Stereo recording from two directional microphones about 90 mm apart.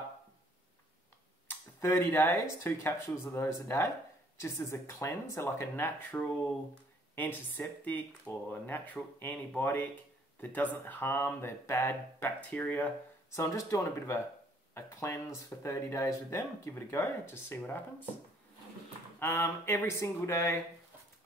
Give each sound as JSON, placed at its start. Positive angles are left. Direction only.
{"t": 1.5, "sound": "speech", "side_deg": 25}
{"t": 12.4, "sound": "speech", "side_deg": 15}
{"t": 13.3, "sound": "speech", "side_deg": 35}
{"t": 19.1, "sound": "speech", "side_deg": 25}